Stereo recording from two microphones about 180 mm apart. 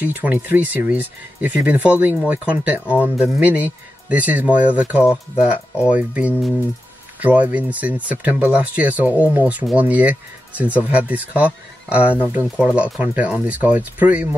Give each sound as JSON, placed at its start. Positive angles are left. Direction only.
{"t": 0.0, "sound": "speech", "side_deg": -10}